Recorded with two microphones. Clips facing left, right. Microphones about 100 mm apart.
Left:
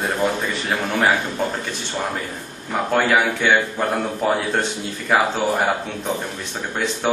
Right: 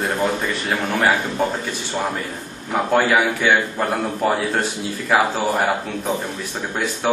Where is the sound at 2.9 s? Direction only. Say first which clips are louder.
Right 1 dB; centre (ahead or behind).